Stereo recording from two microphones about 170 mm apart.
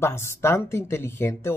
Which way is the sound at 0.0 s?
15° left (ahead or behind).